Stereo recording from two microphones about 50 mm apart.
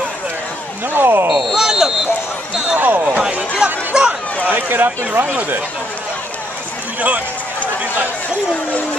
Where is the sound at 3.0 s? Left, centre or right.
Centre.